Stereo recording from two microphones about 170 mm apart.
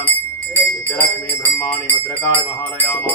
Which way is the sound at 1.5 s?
10° left (ahead or behind).